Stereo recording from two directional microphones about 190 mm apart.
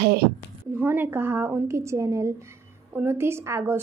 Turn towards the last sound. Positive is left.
turn(degrees=-15)  # may be behind; listen again after turning